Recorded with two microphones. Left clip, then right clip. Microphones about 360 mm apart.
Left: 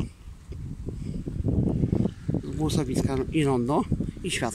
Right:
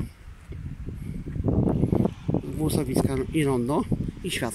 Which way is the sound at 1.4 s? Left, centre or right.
Right.